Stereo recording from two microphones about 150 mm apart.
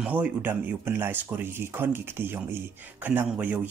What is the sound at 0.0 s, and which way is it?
Speech, 10° right (ahead or behind).